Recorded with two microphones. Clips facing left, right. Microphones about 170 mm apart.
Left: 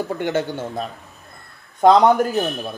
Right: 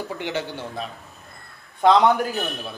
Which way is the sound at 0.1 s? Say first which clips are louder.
Left 6 dB; 50° left (ahead or behind).